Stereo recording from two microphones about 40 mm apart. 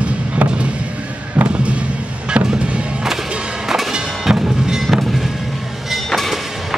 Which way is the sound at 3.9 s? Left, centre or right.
Centre.